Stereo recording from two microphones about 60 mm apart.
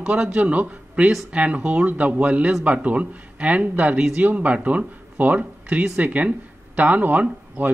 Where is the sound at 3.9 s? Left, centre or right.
Centre.